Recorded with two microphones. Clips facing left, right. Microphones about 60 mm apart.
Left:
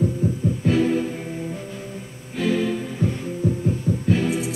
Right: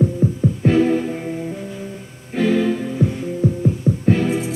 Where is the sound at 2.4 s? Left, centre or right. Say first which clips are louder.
Right 4 dB; right.